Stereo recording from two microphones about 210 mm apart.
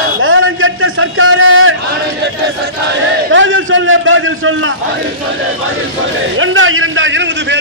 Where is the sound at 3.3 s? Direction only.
65° right (ahead or behind).